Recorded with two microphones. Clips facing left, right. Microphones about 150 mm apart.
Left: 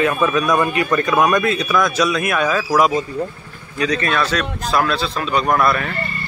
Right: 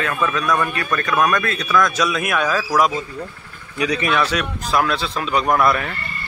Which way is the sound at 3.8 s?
15° right (ahead or behind).